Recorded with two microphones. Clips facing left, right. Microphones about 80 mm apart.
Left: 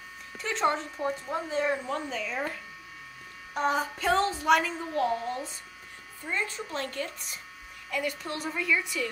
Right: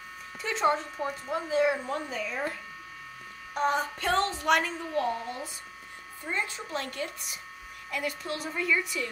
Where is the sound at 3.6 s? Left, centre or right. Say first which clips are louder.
Even; centre.